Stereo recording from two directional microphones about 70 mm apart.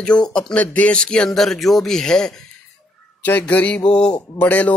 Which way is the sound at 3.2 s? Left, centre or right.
Left.